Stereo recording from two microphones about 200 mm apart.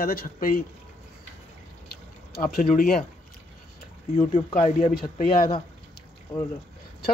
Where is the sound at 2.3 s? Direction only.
50° left (ahead or behind).